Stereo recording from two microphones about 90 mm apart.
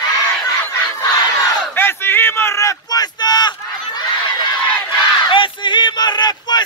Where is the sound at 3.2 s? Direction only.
50° left (ahead or behind).